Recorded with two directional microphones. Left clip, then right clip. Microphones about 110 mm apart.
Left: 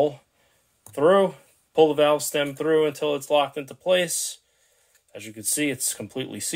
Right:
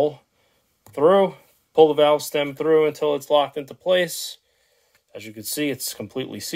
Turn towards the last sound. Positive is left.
turn(degrees=-40)  # may be behind; listen again after turning